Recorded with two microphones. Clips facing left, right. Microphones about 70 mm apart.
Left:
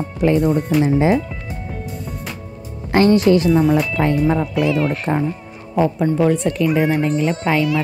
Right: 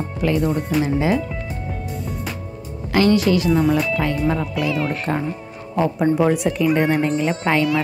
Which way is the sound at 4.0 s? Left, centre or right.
Left.